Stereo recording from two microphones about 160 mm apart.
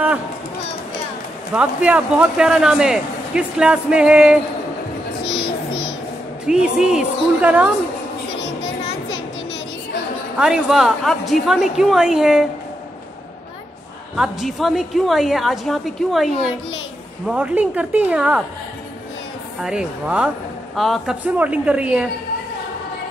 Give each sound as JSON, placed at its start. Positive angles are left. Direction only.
{"t": 1.5, "sound": "a man's voice", "side_deg": -10}
{"t": 5.2, "sound": "a sound", "side_deg": 35}
{"t": 6.4, "sound": "a man's voice", "side_deg": -5}
{"t": 10.3, "sound": "a man's voice", "side_deg": -5}
{"t": 14.1, "sound": "a man's voice", "side_deg": 0}
{"t": 17.3, "sound": "a woman's voice", "side_deg": -5}
{"t": 19.6, "sound": "a man's voice", "side_deg": -5}